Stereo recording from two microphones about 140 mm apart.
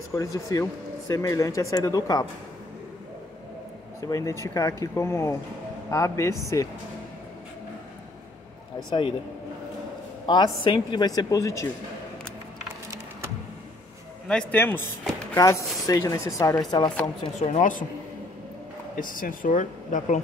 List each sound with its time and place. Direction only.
0.1 s speech: 25° left (ahead or behind)
4.0 s speech: 25° left (ahead or behind)
8.7 s speech: 35° left (ahead or behind)
10.2 s speech: 30° left (ahead or behind)
14.2 s a man's voice: 5° left (ahead or behind); by 16.9 s 30° left (ahead or behind)
17.4 s speech: 60° left (ahead or behind)
18.9 s speech: 75° left (ahead or behind)